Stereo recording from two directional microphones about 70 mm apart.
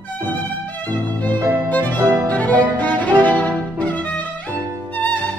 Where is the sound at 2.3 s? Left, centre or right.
Left.